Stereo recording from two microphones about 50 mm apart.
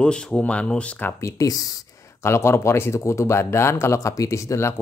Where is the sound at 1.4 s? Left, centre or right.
Left.